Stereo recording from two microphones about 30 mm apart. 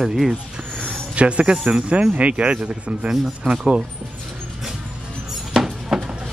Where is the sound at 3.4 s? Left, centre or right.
Centre.